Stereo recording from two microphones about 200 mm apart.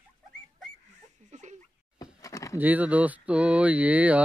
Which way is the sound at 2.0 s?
15° left (ahead or behind).